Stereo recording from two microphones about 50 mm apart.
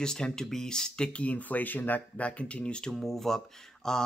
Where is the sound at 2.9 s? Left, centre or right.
Centre.